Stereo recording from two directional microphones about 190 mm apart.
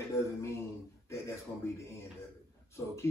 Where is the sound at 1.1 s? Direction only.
15° left (ahead or behind).